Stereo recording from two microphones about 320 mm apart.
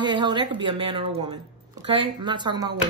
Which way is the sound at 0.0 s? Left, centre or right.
Centre.